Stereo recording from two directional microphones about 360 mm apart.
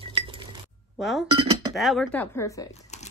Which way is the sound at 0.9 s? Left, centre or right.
Centre.